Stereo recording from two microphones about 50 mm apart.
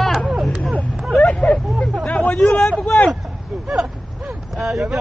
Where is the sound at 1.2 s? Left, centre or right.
Left.